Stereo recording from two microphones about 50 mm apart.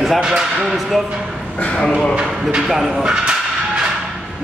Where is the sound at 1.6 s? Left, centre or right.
Centre.